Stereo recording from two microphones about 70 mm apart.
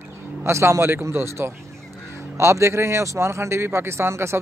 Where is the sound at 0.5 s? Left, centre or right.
Right.